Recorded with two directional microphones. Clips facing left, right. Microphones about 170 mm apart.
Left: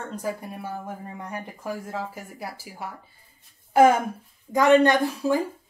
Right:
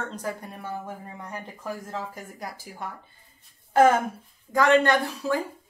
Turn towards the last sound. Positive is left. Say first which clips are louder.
# left 3 dB
turn(degrees=15)  # may be behind; listen again after turning